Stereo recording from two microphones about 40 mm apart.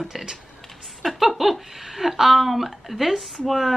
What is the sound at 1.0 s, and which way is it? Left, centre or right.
Speech, centre.